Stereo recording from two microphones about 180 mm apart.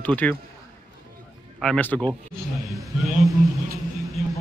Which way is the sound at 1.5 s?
5° left (ahead or behind).